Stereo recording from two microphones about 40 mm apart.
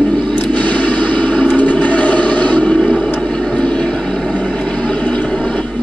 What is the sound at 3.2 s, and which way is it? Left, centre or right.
Vehicle, left.